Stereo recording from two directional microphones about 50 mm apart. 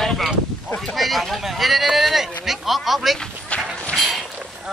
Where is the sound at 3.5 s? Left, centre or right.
Left.